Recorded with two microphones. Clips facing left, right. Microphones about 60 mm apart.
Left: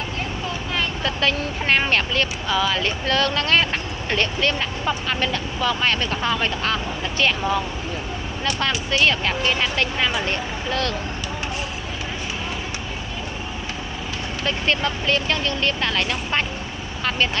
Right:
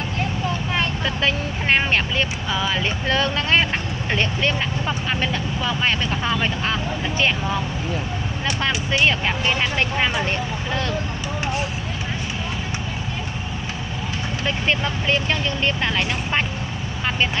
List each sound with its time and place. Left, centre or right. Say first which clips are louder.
1.0 s speech: even; centre
8.5 s speech: even; centre
14.4 s speech: left 1 dB; centre